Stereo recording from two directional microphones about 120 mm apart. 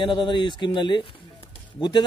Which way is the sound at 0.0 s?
40° left (ahead or behind).